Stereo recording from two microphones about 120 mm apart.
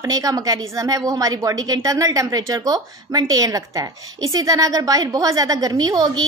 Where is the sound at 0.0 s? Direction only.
30° right (ahead or behind).